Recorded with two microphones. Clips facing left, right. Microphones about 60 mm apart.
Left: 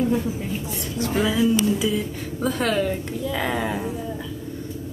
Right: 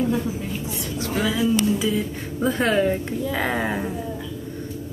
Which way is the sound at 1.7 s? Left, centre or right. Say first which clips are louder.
Even; centre.